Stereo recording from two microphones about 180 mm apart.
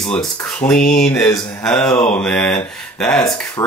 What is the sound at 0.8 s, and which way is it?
Speech, 45° left (ahead or behind).